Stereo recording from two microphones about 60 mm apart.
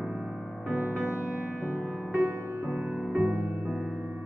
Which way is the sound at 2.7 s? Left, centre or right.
Centre.